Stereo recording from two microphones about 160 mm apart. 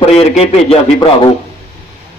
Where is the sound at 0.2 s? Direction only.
40° left (ahead or behind).